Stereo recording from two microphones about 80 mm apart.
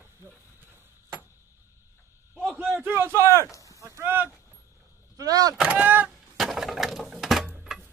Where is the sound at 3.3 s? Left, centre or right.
Left.